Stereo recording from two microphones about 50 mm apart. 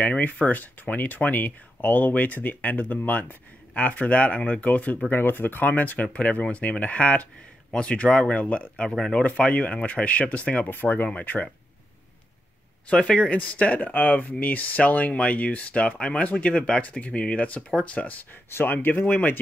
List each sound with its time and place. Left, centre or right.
0.0 s speech: left
5.1 s speech: left
6.1 s speech: left
10.7 s speech: left
12.9 s speech: left
18.5 s speech: left